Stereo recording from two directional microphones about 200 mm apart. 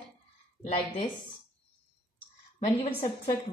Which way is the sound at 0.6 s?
30° left (ahead or behind).